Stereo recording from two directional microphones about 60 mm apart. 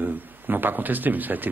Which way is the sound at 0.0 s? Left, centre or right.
Right.